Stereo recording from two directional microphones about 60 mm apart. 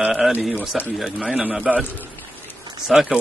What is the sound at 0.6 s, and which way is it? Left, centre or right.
Speech, left.